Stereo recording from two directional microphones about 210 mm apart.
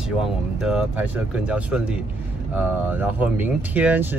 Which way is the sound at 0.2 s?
Centre (ahead or behind).